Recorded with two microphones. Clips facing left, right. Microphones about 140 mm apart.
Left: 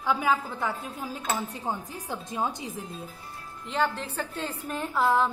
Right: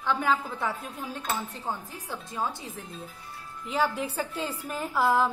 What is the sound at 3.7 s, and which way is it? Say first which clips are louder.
A woman's voice: right 1 dB; 10° right (ahead or behind).